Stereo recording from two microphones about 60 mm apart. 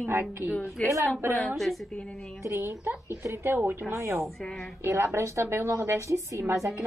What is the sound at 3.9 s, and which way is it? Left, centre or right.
A woman's voice, right.